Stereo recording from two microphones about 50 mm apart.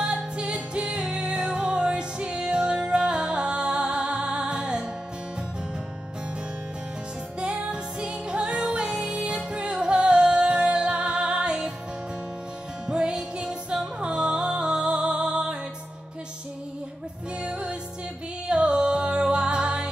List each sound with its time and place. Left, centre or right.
0.0 s music: centre
7.3 s music: centre
12.8 s music: centre
17.4 s music: right